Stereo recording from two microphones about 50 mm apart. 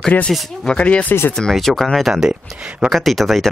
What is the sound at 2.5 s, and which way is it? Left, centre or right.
Speech, right.